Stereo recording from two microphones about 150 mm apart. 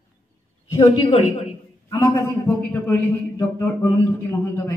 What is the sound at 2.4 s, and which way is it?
Speech, 10° left (ahead or behind).